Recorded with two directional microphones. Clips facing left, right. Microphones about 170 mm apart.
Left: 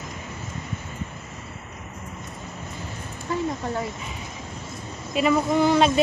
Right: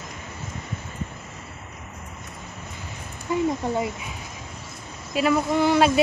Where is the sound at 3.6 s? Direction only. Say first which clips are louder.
Right 3 dB; 15° right (ahead or behind).